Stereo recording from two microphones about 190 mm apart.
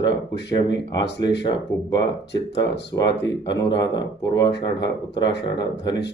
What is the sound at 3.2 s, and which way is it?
Speech, 20° left (ahead or behind).